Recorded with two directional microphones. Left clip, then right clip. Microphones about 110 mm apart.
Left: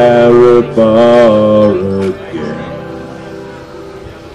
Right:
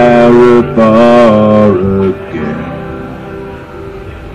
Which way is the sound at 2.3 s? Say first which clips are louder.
Right 2 dB; 35° left (ahead or behind).